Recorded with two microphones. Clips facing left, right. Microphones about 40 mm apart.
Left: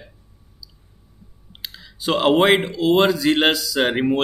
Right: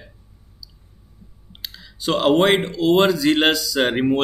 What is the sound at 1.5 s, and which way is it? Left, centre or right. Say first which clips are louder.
Speech: even; centre.